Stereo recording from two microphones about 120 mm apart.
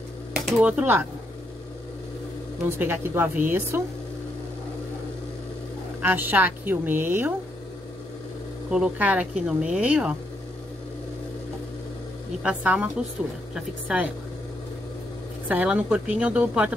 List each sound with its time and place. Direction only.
0.3 s speech: 10° right (ahead or behind)
2.8 s speech: 20° right (ahead or behind)
5.9 s speech: 15° right (ahead or behind)
8.6 s speech: 5° right (ahead or behind)
12.4 s speech: 5° right (ahead or behind)
15.4 s speech: 10° right (ahead or behind)